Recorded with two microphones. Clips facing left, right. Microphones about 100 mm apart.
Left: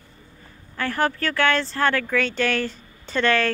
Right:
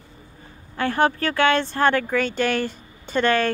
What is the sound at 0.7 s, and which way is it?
Speech, 20° right (ahead or behind).